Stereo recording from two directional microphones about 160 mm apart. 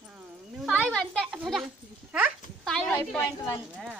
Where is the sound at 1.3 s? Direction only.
5° right (ahead or behind).